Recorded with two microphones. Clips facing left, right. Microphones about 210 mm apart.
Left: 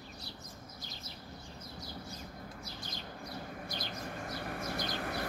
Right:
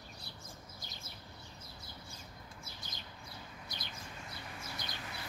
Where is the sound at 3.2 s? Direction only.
60° left (ahead or behind).